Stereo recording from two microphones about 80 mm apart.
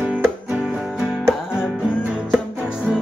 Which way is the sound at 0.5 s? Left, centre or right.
Centre.